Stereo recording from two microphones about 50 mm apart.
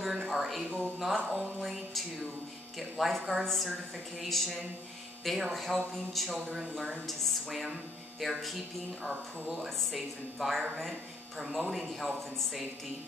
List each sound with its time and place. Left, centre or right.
0.0 s speech: centre